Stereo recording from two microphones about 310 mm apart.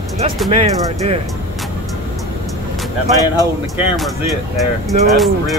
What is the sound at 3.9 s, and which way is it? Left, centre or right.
Speech, centre.